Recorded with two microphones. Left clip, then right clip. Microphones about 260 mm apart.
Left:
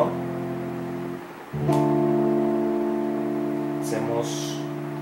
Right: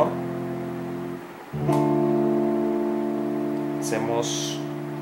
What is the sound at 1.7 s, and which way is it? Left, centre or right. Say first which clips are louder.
Music: even; right.